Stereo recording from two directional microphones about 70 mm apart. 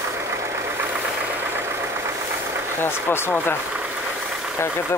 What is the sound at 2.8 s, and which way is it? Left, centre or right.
Speech, left.